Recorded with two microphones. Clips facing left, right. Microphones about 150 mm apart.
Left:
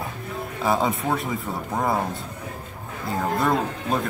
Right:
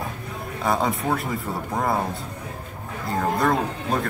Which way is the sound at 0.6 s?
Centre (ahead or behind).